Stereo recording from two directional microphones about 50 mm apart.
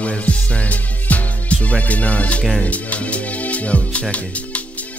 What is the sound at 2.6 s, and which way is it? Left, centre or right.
Speech, left.